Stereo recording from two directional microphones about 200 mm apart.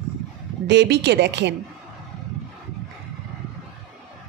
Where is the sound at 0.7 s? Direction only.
60° right (ahead or behind).